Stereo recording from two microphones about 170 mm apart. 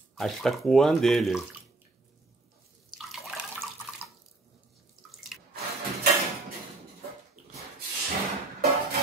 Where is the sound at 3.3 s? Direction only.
Centre (ahead or behind).